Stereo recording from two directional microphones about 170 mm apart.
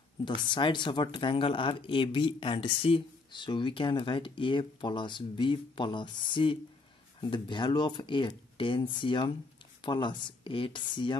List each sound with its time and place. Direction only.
0.2 s speech: 25° left (ahead or behind)